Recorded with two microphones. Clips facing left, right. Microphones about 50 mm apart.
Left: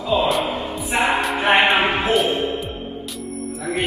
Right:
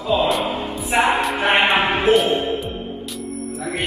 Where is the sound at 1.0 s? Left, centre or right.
Centre.